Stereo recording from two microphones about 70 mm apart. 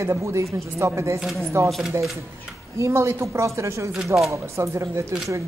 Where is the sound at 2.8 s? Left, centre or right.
Right.